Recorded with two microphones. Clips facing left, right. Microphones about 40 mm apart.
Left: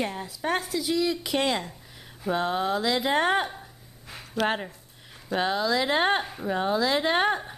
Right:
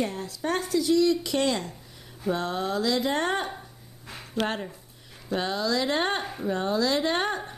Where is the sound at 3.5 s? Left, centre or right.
Centre.